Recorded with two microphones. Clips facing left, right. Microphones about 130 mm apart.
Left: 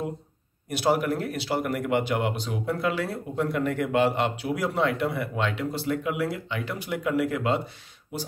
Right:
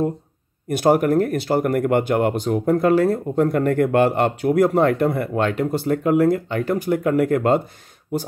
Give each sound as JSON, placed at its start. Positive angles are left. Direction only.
{"t": 0.7, "sound": "speech", "side_deg": -50}